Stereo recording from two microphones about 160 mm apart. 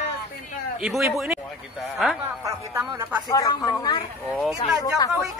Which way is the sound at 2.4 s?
20° right (ahead or behind).